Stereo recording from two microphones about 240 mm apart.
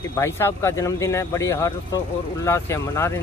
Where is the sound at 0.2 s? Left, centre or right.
Centre.